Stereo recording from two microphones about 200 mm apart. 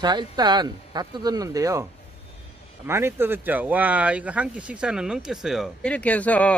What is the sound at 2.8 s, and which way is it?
Speech, 10° right (ahead or behind).